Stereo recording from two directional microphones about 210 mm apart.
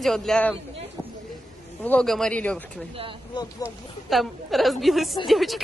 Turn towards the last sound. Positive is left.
turn(degrees=0)  # may be behind; listen again after turning